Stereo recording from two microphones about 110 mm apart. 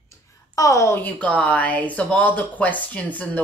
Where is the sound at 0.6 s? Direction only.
30° left (ahead or behind).